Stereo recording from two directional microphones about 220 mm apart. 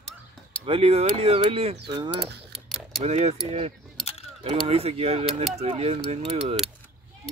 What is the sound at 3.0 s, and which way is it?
Mechanisms, 30° right (ahead or behind).